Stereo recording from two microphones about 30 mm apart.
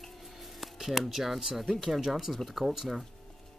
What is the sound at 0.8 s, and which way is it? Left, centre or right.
Speech, centre.